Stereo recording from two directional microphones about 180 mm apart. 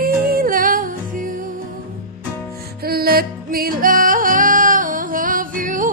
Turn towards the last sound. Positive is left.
turn(degrees=-50)  # may be behind; listen again after turning